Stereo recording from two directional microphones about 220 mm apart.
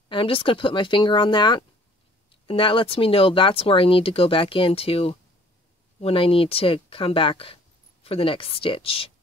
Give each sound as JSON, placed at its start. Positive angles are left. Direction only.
{"t": 0.1, "sound": "speech", "side_deg": 25}